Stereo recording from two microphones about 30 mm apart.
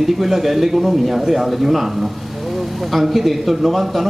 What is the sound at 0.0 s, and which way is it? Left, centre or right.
Speech, centre.